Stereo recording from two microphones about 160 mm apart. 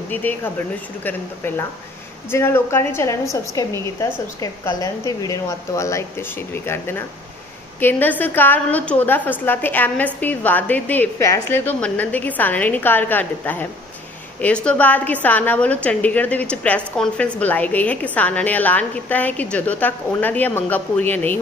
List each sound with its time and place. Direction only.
0.1 s a woman's voice: 10° left (ahead or behind)